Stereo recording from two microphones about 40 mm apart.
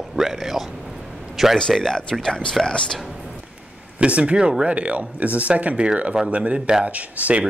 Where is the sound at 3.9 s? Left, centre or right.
Right.